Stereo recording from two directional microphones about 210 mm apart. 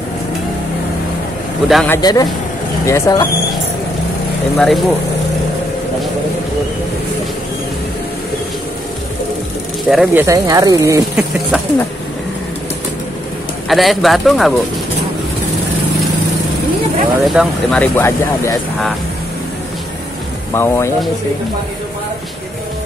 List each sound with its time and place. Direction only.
1.7 s speech: centre (ahead or behind)
2.0 s speech: 20° left (ahead or behind)
4.6 s speech: centre (ahead or behind)
9.8 s speech: centre (ahead or behind)
10.2 s speech: 15° right (ahead or behind)
13.7 s speech: centre (ahead or behind)
17.3 s speech: centre (ahead or behind)
20.5 s speech: 10° left (ahead or behind)